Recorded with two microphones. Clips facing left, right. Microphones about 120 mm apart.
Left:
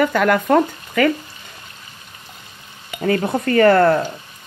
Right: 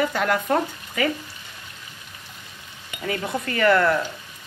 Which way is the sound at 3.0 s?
45° left (ahead or behind).